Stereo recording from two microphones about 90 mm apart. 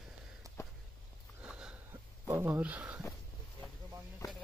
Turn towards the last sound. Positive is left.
turn(degrees=-15)  # may be behind; listen again after turning